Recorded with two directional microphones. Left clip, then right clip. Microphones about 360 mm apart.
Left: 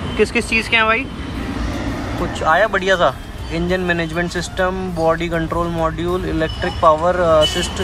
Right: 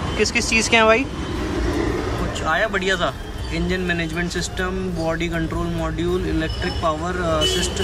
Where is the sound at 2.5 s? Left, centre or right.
Centre.